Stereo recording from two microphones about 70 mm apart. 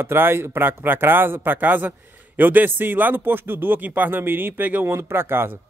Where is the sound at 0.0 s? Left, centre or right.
Right.